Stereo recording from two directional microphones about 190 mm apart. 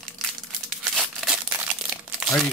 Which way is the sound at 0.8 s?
Centre (ahead or behind).